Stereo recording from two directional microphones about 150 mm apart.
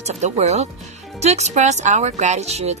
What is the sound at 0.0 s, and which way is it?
A woman's voice, 50° right (ahead or behind).